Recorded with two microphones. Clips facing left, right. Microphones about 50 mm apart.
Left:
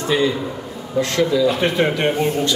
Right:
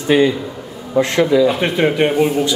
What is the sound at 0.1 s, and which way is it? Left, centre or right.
A man's voice, right.